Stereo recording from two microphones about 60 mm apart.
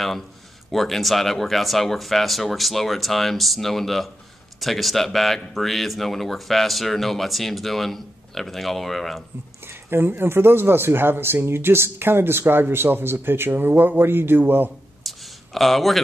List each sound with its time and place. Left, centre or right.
0.7 s speech: centre
9.7 s speech: right
15.0 s a sound: centre